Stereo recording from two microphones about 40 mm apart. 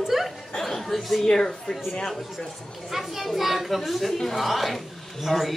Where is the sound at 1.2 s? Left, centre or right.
Centre.